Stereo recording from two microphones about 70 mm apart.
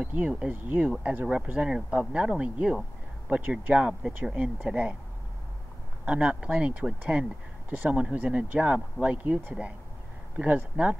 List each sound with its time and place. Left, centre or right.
0.0 s speech: centre
6.0 s speech: centre